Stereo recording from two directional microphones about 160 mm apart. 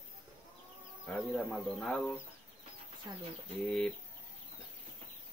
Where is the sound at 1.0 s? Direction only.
Centre (ahead or behind).